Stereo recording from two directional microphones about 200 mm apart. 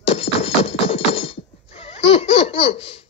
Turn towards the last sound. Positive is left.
turn(degrees=30)  # may be behind; listen again after turning